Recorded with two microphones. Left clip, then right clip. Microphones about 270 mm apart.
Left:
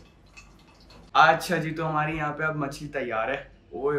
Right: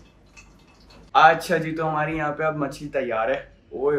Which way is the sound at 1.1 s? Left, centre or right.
Centre.